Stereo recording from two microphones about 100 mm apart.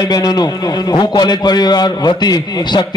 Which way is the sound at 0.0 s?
40° left (ahead or behind).